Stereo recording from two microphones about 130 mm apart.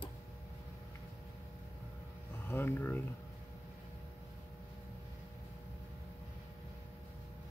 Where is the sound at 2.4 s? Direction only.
15° left (ahead or behind).